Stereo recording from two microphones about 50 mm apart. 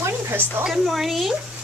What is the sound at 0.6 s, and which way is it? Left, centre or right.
Speech, centre.